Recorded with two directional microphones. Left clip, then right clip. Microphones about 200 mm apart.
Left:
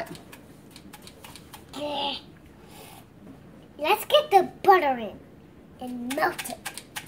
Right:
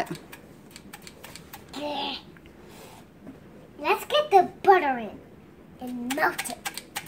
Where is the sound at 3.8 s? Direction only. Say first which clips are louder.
Left 2 dB; 15° left (ahead or behind).